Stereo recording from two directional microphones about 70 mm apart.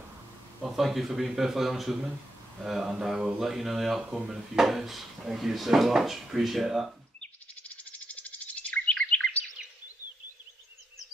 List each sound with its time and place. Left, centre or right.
0.7 s speech: centre
7.2 s bird: left